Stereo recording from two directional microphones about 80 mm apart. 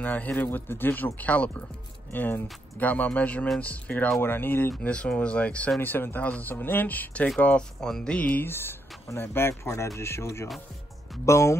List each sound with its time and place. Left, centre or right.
0.0 s speech: left
8.5 s a man's voice: left